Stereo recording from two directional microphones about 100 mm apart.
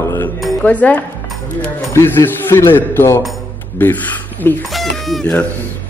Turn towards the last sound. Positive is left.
turn(degrees=0)  # may be behind; listen again after turning